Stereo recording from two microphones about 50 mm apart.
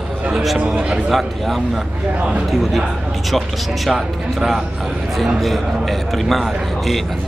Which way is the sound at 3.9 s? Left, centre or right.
Centre.